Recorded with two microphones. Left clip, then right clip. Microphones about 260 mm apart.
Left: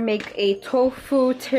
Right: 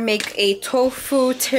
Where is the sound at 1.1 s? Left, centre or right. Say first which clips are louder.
Right 2 dB; centre.